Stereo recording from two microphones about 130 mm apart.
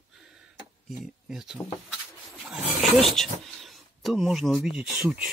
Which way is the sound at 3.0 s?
Centre (ahead or behind).